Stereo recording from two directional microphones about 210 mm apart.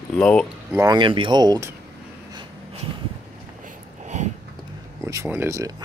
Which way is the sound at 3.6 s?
35° right (ahead or behind).